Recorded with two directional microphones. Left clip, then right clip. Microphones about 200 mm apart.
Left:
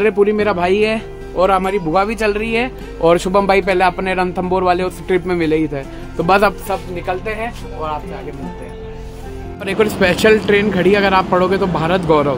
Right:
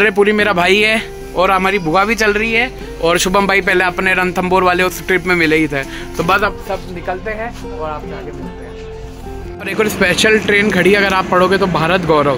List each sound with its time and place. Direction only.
0.0 s speech: centre (ahead or behind)
2.5 s speech: 20° left (ahead or behind)
3.2 s speech: centre (ahead or behind)
6.7 s speech: 30° left (ahead or behind)
9.7 s speech: centre (ahead or behind)